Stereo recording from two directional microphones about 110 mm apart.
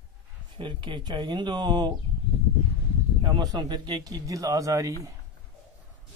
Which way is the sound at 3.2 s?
40° right (ahead or behind).